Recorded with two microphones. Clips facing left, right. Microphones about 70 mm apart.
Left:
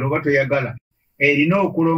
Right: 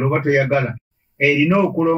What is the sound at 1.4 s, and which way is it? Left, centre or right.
Speech, centre.